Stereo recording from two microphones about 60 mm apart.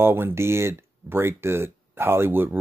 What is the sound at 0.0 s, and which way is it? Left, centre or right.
Speech, right.